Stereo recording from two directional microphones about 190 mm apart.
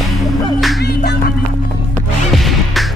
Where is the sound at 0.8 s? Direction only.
55° left (ahead or behind).